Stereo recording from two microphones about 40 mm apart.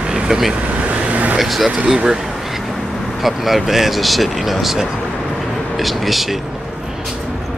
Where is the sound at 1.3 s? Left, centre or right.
Centre.